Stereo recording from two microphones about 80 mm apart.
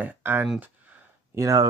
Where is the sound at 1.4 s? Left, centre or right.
Right.